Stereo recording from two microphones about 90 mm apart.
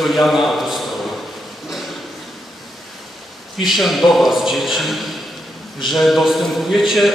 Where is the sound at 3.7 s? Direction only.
Centre (ahead or behind).